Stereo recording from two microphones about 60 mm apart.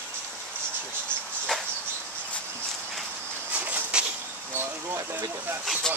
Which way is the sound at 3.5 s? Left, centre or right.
Right.